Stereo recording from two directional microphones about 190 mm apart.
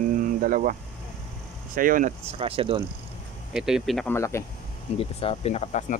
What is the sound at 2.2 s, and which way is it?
Speech, 30° right (ahead or behind).